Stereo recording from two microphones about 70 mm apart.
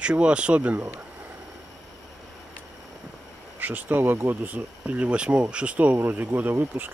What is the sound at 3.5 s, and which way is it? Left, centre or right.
Speech, right.